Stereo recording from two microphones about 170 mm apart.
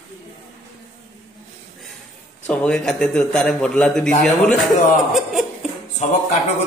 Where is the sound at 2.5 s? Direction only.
5° left (ahead or behind).